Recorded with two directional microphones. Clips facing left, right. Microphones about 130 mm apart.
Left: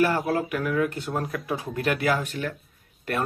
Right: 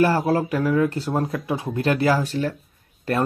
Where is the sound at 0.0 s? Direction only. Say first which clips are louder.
Right 4 dB; 30° right (ahead or behind).